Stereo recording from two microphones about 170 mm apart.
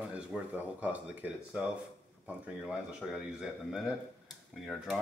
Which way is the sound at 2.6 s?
Centre (ahead or behind).